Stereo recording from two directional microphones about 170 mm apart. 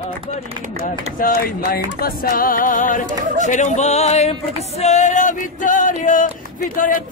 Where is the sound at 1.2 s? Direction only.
60° left (ahead or behind).